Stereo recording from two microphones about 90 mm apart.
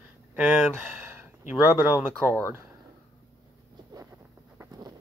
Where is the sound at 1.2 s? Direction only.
15° right (ahead or behind).